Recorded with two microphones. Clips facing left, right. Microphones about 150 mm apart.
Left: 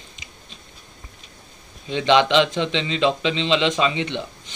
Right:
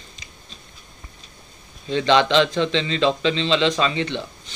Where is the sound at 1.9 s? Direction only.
15° left (ahead or behind).